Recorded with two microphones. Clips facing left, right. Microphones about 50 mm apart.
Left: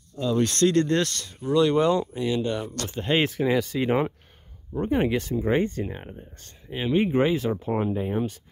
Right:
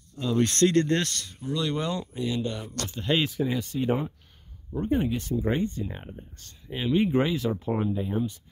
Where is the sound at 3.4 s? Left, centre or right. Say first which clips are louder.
Left 4 dB; left.